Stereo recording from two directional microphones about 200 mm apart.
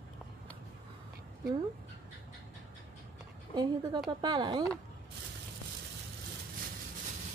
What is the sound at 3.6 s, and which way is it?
Speech, 20° right (ahead or behind).